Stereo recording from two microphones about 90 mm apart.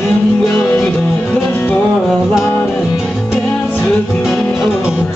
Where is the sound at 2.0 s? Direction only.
5° right (ahead or behind).